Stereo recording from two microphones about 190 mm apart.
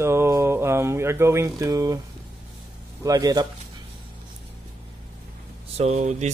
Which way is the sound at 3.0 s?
20° right (ahead or behind).